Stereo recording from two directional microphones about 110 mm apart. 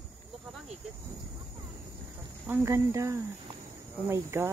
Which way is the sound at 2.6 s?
25° right (ahead or behind).